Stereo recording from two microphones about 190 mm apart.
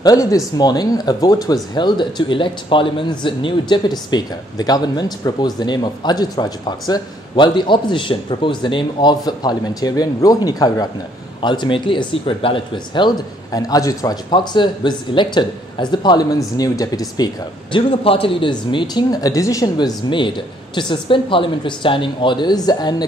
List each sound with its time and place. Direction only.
0.0 s speech: 20° left (ahead or behind)
17.7 s speech: 30° left (ahead or behind)